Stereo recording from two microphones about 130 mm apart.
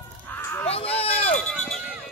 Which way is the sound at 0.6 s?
50° left (ahead or behind).